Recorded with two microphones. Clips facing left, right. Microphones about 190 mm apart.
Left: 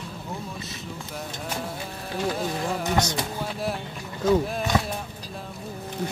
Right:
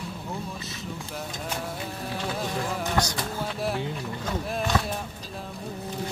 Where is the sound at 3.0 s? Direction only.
20° left (ahead or behind).